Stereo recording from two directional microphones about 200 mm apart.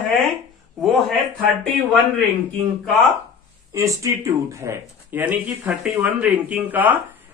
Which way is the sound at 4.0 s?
15° right (ahead or behind).